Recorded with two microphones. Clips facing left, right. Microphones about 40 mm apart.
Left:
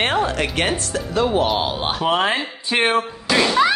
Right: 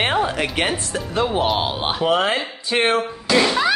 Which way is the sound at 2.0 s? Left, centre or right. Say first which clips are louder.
Even; centre.